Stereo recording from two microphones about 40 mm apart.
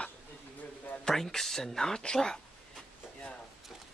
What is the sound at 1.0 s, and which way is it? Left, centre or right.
Speech, centre.